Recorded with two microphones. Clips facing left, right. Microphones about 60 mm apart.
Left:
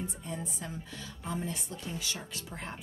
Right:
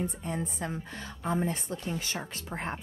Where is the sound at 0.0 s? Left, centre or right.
Right.